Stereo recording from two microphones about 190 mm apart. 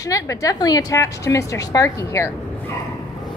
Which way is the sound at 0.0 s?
15° left (ahead or behind).